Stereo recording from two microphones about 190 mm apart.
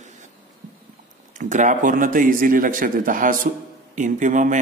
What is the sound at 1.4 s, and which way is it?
A man's voice, 40° right (ahead or behind).